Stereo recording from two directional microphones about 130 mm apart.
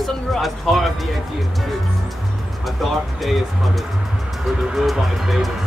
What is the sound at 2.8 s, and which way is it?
Speech, centre (ahead or behind).